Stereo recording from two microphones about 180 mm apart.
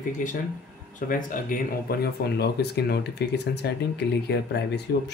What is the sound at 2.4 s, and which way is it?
Speech, 65° left (ahead or behind).